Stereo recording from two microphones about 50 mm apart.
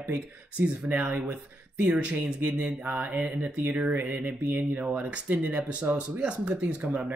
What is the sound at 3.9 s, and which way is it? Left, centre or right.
Speech, right.